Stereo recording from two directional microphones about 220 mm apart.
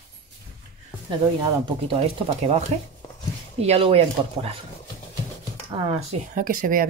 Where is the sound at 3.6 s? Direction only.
25° right (ahead or behind).